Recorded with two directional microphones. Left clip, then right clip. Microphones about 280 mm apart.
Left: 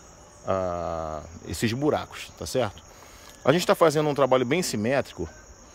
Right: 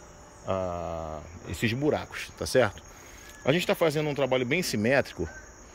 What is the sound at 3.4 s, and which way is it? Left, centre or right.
Speech, centre.